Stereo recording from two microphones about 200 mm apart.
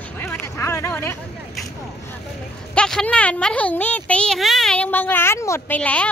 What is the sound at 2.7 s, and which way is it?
Speech, 5° left (ahead or behind).